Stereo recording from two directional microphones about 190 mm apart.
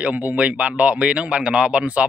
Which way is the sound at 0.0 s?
10° right (ahead or behind).